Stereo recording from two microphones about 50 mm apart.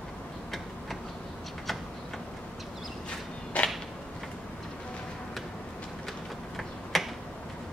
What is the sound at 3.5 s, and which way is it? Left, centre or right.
Whip, left.